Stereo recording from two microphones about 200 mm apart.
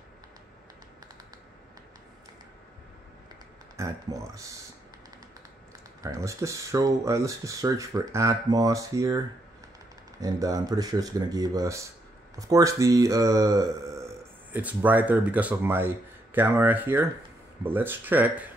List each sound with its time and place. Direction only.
3.7 s speech: 15° right (ahead or behind)
6.0 s speech: 15° right (ahead or behind)
10.2 s speech: 20° right (ahead or behind)